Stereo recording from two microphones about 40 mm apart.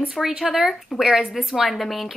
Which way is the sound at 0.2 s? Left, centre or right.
Centre.